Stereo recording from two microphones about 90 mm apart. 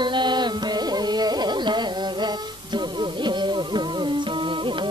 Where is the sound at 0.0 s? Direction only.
60° right (ahead or behind).